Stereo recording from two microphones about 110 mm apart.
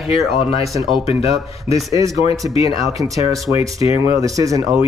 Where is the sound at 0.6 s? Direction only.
30° right (ahead or behind).